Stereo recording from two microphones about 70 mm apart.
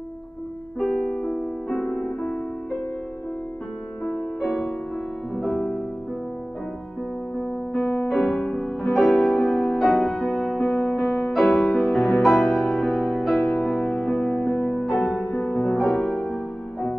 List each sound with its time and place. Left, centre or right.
0.7 s piano: centre
1.7 s music: centre
4.4 s music: centre
5.3 s music: centre
7.8 s piano: centre
8.1 s piano: centre
8.5 s music: centre
14.9 s music: centre
15.2 s music: centre
15.8 s music: centre